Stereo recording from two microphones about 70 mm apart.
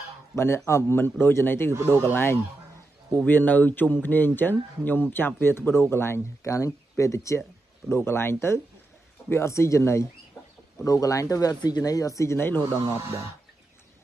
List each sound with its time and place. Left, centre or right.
0.7 s a man's voice: left
7.9 s a man's voice: left
11.6 s speech: left
12.9 s speech: right